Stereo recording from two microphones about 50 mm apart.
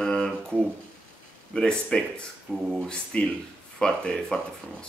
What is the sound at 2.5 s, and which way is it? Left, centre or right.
Speech, centre.